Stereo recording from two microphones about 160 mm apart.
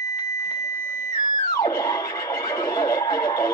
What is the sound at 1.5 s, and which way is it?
Music, 20° left (ahead or behind).